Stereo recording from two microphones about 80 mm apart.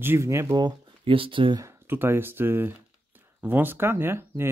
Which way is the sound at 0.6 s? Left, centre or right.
Right.